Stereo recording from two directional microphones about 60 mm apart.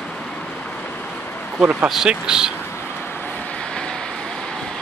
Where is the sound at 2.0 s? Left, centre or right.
Centre.